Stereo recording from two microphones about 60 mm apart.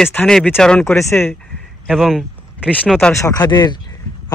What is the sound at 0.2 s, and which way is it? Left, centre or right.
Speech, left.